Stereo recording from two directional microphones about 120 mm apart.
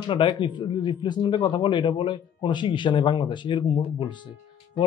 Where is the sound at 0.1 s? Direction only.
45° left (ahead or behind).